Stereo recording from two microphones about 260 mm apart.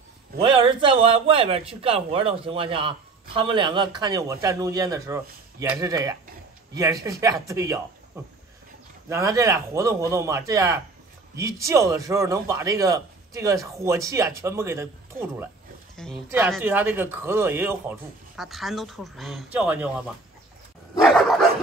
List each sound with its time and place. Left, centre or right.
0.4 s a man's voice: centre
21.0 s dog: centre